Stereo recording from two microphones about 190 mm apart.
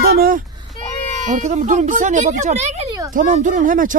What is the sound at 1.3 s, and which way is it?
Speech, 40° right (ahead or behind).